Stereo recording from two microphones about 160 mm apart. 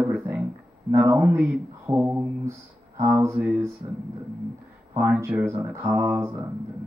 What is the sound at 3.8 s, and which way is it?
Speech, 35° right (ahead or behind).